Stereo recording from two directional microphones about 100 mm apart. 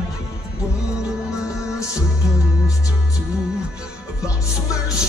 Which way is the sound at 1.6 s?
30° left (ahead or behind).